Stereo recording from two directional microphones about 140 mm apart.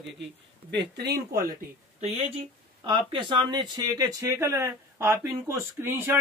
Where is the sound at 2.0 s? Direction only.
50° right (ahead or behind).